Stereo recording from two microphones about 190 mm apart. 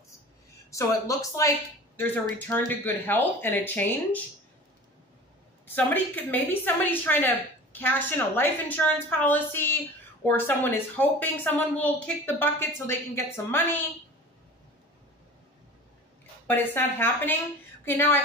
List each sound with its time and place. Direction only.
0.7 s a woman's voice: 15° left (ahead or behind)
5.8 s a woman's voice: 10° left (ahead or behind)
16.4 s a woman's voice: 10° left (ahead or behind)